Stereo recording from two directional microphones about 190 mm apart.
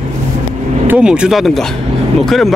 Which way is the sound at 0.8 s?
5° right (ahead or behind).